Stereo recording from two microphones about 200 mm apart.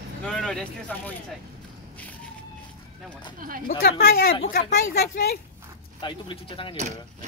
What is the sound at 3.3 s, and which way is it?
Speech, 45° right (ahead or behind).